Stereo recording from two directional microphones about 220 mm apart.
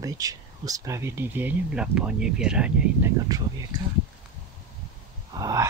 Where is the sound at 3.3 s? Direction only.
15° right (ahead or behind).